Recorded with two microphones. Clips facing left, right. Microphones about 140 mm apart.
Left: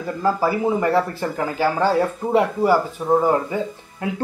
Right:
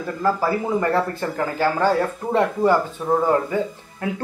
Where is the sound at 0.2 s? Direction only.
15° left (ahead or behind).